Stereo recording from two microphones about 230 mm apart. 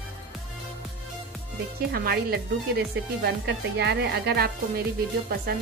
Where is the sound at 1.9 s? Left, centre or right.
Right.